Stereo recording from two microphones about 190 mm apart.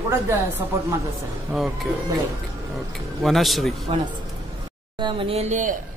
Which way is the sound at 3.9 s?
25° right (ahead or behind).